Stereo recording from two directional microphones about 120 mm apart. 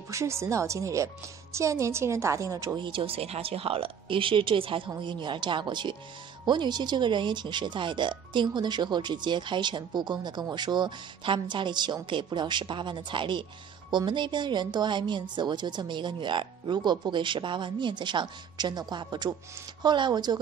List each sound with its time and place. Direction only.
0.1 s speech: 25° right (ahead or behind)
2.8 s speech: 45° right (ahead or behind)